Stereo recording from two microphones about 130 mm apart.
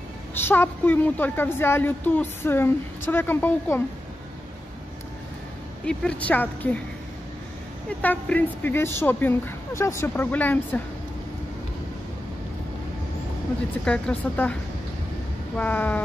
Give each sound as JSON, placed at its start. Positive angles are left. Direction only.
{"t": 0.5, "sound": "a woman's voice", "side_deg": 15}
{"t": 5.9, "sound": "a woman's voice", "side_deg": 10}
{"t": 8.0, "sound": "a woman's voice", "side_deg": 10}
{"t": 13.8, "sound": "a woman's voice", "side_deg": 10}